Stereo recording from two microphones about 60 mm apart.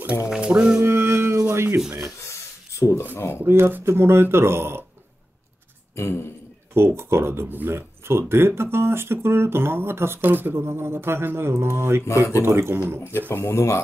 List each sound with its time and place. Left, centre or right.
0.0 s music: right
0.5 s music: right
0.8 s a sound: right
1.5 s speech: right
2.2 s a sound: left
3.2 s speech: left
3.4 s speech: right
5.9 s speech: left
6.7 s speech: right
13.3 s speech: left